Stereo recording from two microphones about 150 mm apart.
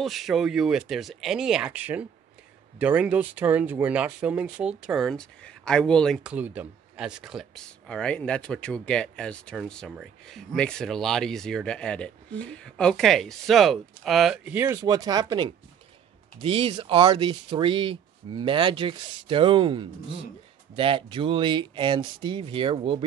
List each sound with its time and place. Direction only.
0.0 s speech: centre (ahead or behind)
6.2 s speech: 10° right (ahead or behind); by 23.0 s 35° right (ahead or behind)